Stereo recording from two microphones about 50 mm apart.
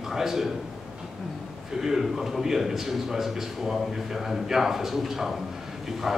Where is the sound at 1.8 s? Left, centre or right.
Centre.